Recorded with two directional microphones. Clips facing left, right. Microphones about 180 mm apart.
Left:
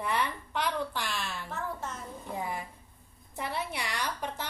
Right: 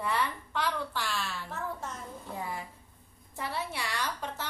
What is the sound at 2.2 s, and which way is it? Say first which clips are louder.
A woman's voice: left 3 dB; 15° left (ahead or behind).